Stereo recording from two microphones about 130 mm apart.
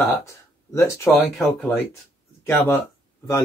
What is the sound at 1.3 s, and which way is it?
Speech, 10° left (ahead or behind).